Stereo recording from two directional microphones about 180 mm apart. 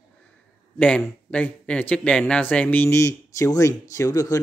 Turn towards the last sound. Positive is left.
turn(degrees=20)  # may be behind; listen again after turning